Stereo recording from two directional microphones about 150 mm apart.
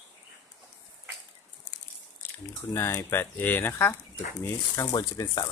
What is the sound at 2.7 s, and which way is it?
Speech, 15° left (ahead or behind).